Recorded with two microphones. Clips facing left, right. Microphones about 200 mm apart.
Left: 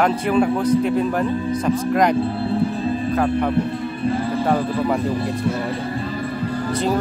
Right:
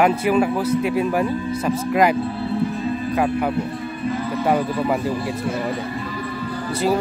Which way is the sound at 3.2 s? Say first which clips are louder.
Even; 10° right (ahead or behind).